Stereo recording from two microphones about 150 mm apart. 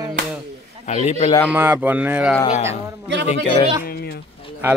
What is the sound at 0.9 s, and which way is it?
Speech, 50° left (ahead or behind).